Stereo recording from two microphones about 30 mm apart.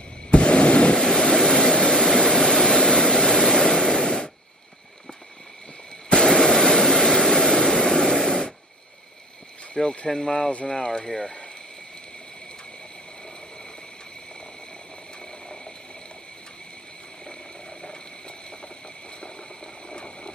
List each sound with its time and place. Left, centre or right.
0.3 s a sound: left
0.9 s vehicle: centre
6.2 s vehicle: centre
8.3 s static: left
10.0 s speech: left
15.4 s a sound: left
19.2 s ratchet: left